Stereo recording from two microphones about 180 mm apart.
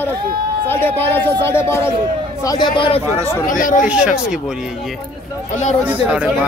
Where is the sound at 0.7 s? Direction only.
10° left (ahead or behind); by 3.0 s 25° left (ahead or behind).